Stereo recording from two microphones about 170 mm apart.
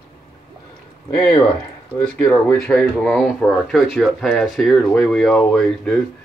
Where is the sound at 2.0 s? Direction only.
5° left (ahead or behind).